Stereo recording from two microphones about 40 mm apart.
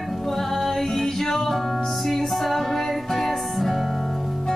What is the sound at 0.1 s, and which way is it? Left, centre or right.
Music, centre.